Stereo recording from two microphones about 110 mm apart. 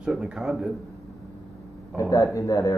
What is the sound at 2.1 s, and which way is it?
Speech, 30° left (ahead or behind).